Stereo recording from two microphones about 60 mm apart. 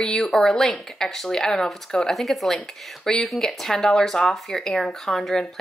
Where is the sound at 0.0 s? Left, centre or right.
Centre.